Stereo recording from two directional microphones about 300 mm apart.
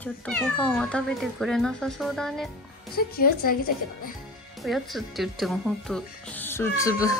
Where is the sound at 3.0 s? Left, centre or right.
Left.